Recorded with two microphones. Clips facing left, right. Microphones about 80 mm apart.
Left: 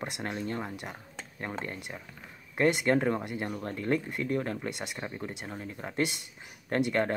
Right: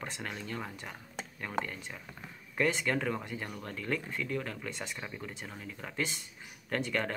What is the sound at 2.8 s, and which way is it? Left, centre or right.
Speech, left.